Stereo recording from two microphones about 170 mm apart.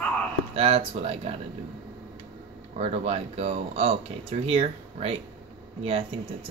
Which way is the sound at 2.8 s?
40° right (ahead or behind).